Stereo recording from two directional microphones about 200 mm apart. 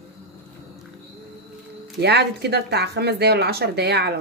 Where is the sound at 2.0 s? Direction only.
55° right (ahead or behind).